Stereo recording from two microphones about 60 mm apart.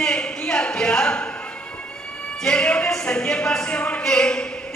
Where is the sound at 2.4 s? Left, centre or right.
Centre.